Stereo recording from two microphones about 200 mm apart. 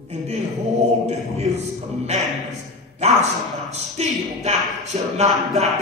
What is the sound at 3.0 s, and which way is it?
Speech, 35° right (ahead or behind).